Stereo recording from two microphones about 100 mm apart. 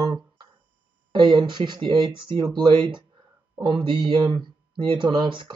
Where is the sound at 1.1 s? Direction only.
50° right (ahead or behind).